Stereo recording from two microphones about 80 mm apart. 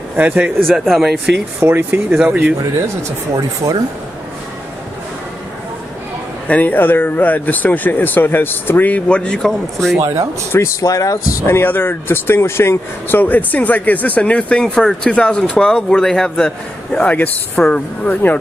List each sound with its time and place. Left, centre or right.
0.2 s speech: right
0.7 s speech: centre
1.7 s speech: right
3.0 s speech: right
6.4 s speech: centre
9.9 s speech: right
10.8 s speech: left
11.5 s speech: left